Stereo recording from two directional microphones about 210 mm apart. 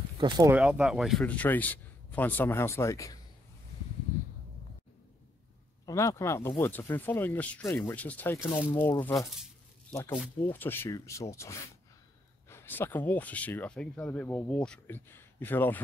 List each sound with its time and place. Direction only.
0.2 s speech: 15° right (ahead or behind)
0.6 s speech: centre (ahead or behind); by 3.2 s 15° left (ahead or behind)
5.9 s speech: 15° left (ahead or behind)
8.7 s speech: 20° left (ahead or behind)
9.0 s speech: 10° left (ahead or behind)
10.5 s speech: 10° left (ahead or behind)